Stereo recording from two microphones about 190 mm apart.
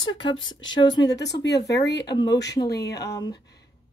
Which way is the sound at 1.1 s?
65° left (ahead or behind).